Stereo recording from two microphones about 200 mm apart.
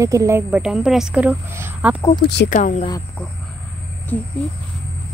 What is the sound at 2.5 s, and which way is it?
Speech, 35° left (ahead or behind).